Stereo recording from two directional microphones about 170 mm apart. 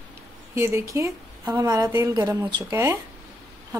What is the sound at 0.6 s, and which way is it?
A woman's voice, 15° right (ahead or behind).